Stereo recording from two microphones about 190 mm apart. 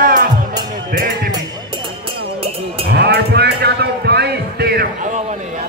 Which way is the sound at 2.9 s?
60° right (ahead or behind).